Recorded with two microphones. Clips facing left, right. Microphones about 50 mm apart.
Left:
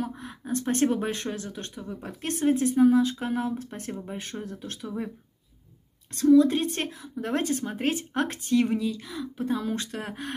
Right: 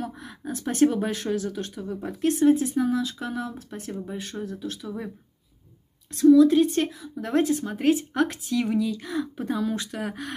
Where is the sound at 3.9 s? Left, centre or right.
Centre.